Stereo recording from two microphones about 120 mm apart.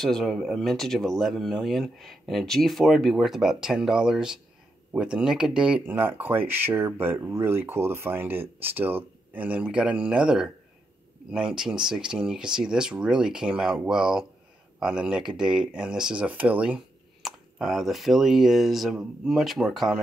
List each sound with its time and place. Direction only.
0.0 s speech: centre (ahead or behind)